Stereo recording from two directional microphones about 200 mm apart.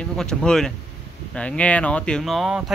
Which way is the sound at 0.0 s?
5° left (ahead or behind).